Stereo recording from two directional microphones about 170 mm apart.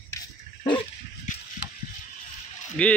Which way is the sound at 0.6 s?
30° left (ahead or behind).